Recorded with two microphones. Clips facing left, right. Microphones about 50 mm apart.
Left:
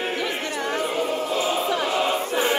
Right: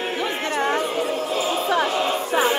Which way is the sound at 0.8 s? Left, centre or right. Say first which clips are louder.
Right 1 dB; centre.